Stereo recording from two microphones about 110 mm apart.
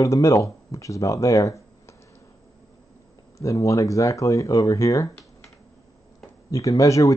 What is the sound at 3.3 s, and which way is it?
Speech, 30° left (ahead or behind).